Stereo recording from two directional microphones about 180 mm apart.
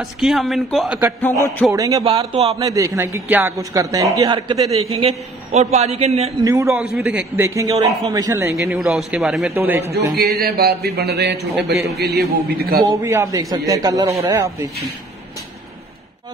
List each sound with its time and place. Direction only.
0.0 s a man's voice: centre (ahead or behind)
1.4 s speech: 10° left (ahead or behind)
1.7 s speech: 20° right (ahead or behind)
2.0 s speech: 35° right (ahead or behind)
2.6 s speech: 20° right (ahead or behind); by 6.3 s 35° right (ahead or behind)
6.4 s a man's voice: 15° right (ahead or behind)
8.5 s a man's voice: centre (ahead or behind)
9.6 s a man's voice: 15° right (ahead or behind)
10.1 s speech: 60° right (ahead or behind)
12.8 s a man's voice: 15° right (ahead or behind)